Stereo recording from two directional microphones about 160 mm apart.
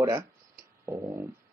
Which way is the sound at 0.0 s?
20° right (ahead or behind).